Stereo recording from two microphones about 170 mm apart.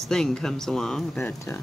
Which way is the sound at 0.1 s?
5° left (ahead or behind).